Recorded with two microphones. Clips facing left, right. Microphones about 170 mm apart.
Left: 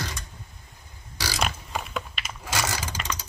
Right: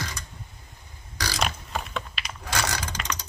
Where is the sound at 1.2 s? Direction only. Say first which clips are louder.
Even; 5° left (ahead or behind).